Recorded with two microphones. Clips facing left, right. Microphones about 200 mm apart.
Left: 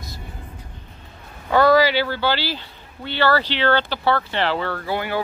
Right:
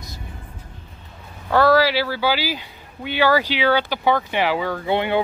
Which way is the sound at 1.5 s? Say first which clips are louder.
Left 1 dB; centre (ahead or behind).